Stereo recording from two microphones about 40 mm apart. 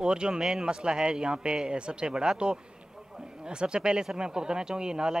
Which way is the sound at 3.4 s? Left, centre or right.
Right.